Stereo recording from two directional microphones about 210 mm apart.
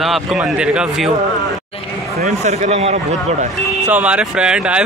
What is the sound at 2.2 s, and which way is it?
Speech, 35° right (ahead or behind).